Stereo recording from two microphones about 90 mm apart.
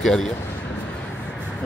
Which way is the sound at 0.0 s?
5° left (ahead or behind).